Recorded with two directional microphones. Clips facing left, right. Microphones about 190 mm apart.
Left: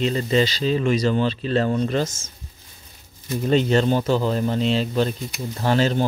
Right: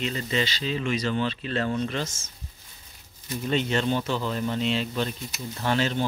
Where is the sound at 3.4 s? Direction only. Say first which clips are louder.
Left 7 dB; 40° left (ahead or behind).